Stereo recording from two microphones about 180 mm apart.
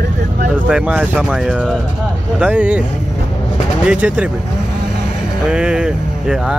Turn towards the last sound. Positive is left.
turn(degrees=-5)  # may be behind; listen again after turning